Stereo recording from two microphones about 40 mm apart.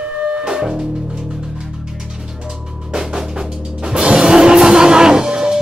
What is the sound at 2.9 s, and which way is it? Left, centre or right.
Music, centre.